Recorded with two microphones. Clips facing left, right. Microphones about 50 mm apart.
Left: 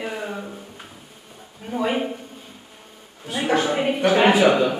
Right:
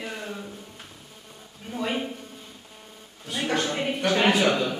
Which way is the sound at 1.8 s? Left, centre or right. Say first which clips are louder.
Left 5 dB; centre.